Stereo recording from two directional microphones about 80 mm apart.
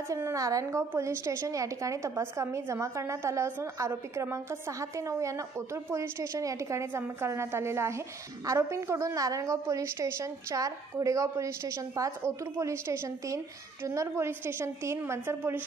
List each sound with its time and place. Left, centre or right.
0.1 s a woman's voice: right